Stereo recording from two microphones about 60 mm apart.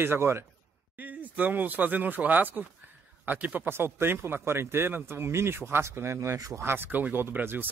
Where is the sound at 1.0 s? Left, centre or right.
Right.